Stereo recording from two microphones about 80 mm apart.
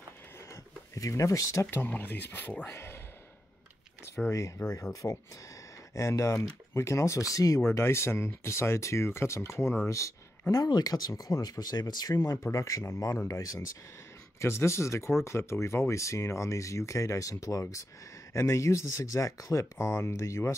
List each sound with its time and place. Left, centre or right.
0.5 s a sound: left
1.7 s speech: left
4.1 s speech: left
7.6 s speech: left
10.5 s speech: left